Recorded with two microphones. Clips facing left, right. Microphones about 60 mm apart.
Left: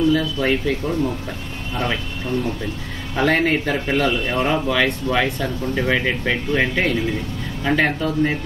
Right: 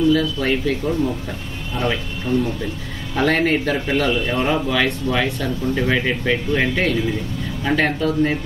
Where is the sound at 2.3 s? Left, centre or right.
Left.